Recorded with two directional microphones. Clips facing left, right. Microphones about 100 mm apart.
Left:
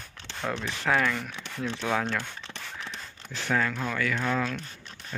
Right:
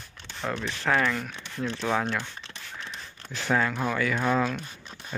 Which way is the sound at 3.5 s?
20° right (ahead or behind).